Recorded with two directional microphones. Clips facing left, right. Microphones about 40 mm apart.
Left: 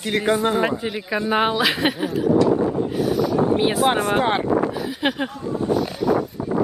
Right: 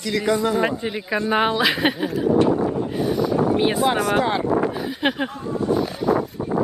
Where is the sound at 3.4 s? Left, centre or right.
Left.